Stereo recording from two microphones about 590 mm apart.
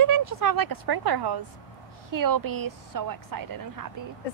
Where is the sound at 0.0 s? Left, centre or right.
Right.